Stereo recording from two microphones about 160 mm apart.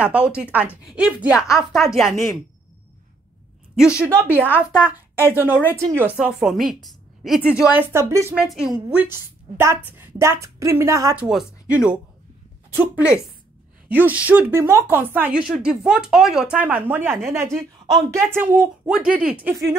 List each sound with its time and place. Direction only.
0.0 s a woman's voice: 10° right (ahead or behind)
4.0 s a woman's voice: 15° right (ahead or behind)
8.4 s a woman's voice: 5° right (ahead or behind)
11.2 s speech: 5° right (ahead or behind)